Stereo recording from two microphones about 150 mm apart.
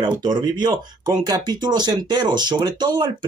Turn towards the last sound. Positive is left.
turn(degrees=-30)  # may be behind; listen again after turning